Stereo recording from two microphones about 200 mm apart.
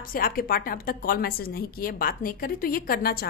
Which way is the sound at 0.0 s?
45° left (ahead or behind).